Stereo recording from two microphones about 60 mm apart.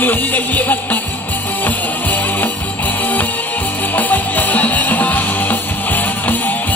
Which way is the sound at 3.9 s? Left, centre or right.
Left.